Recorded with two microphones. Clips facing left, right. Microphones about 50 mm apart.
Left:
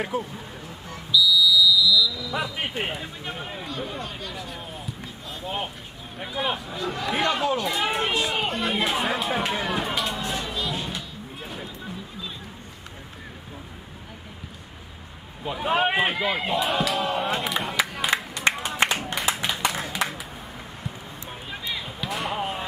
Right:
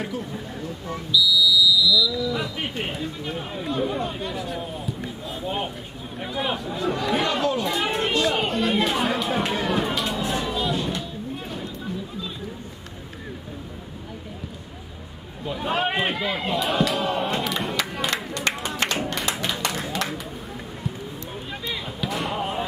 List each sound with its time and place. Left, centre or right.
0.1 s speech: left
1.1 s fire alarm: centre
2.3 s speech: centre
4.0 s speech: centre
4.3 s speech: centre
15.4 s speech: centre
18.1 s a sound: centre
18.5 s a sound: centre
21.3 s a sound: centre